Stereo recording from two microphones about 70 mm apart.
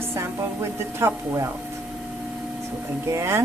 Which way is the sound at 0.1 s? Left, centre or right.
Right.